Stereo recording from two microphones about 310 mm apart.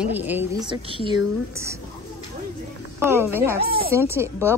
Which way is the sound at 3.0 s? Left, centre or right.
Centre.